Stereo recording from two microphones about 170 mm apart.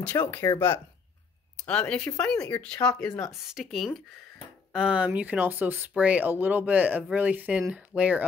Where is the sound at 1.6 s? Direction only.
5° left (ahead or behind).